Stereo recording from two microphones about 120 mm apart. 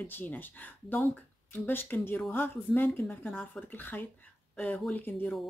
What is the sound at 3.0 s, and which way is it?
Speech, 5° left (ahead or behind).